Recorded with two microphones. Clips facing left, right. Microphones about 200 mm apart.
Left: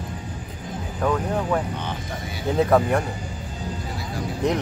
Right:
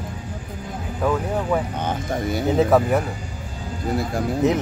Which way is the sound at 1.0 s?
5° right (ahead or behind).